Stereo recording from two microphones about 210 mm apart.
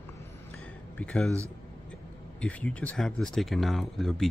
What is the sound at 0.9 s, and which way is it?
Speech, 5° left (ahead or behind).